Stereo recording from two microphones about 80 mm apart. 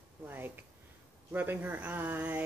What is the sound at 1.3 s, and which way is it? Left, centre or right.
Speech, right.